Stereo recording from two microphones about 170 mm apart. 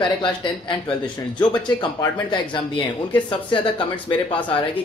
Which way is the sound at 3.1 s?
30° left (ahead or behind).